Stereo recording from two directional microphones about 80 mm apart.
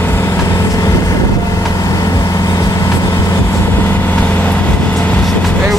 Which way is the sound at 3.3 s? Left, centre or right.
Left.